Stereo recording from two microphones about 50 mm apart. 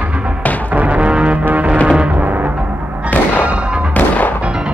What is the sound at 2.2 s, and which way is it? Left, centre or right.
Music, right.